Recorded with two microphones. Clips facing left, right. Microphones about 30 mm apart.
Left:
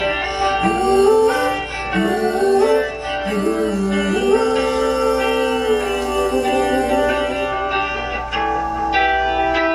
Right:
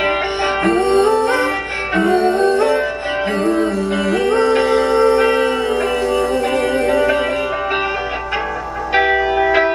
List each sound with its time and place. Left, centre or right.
0.7 s music: right
2.0 s music: right
2.3 s music: right
3.9 s music: right
4.3 s music: right
9.0 s music: centre